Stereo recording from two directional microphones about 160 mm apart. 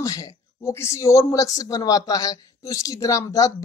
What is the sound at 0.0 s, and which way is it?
A man's voice, 20° left (ahead or behind).